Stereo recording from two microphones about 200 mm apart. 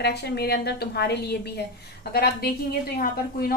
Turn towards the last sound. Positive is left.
turn(degrees=45)  # may be behind; listen again after turning